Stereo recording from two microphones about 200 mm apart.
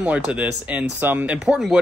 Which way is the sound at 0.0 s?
5° right (ahead or behind).